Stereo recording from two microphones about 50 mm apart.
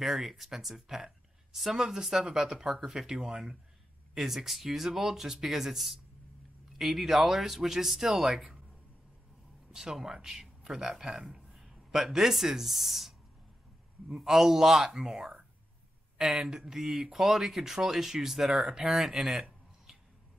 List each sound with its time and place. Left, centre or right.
0.0 s speech: centre
9.7 s a man's voice: centre